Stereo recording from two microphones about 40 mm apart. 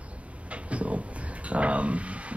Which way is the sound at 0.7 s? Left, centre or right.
Right.